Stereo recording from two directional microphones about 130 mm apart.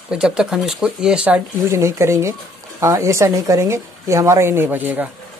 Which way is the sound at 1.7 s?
20° right (ahead or behind).